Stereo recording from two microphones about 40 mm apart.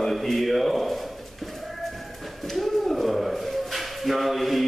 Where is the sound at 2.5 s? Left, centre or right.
Centre.